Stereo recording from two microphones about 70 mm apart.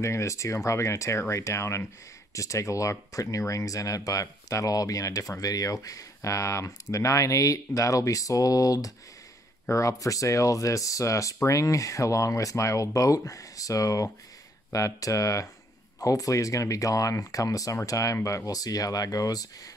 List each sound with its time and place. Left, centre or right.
0.0 s speech: left